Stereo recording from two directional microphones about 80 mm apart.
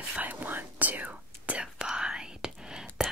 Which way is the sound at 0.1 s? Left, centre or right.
Right.